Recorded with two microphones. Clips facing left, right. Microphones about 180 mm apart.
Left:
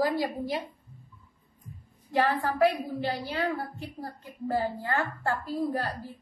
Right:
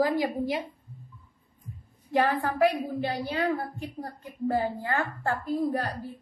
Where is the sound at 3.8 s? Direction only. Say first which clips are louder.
Right 2 dB; 20° right (ahead or behind).